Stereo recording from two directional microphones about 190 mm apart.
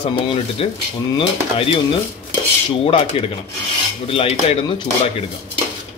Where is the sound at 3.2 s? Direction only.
30° left (ahead or behind).